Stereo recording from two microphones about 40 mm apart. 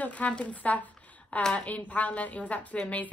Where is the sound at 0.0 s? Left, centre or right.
Left.